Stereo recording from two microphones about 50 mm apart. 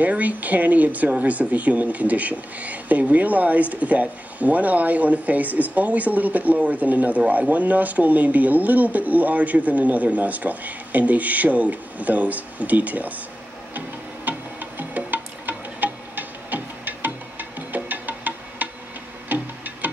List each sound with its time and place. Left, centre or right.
0.0 s speech: right
13.7 s music: right